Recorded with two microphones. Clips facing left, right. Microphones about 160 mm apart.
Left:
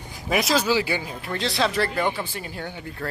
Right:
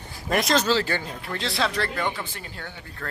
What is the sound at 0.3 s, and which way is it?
Speech, 5° left (ahead or behind).